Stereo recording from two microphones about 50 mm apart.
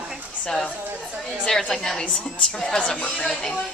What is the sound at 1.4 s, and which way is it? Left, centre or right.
A woman's voice, centre.